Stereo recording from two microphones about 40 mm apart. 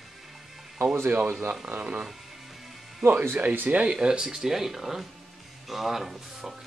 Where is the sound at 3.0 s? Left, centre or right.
Right.